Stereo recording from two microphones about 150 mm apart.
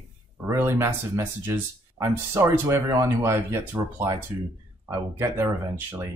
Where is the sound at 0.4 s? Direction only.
15° right (ahead or behind).